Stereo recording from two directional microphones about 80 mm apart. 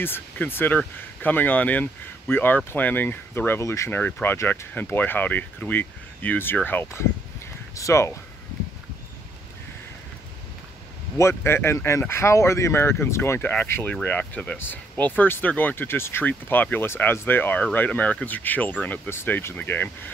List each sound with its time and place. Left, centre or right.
0.0 s speech: left
3.9 s speech: left
11.1 s speech: left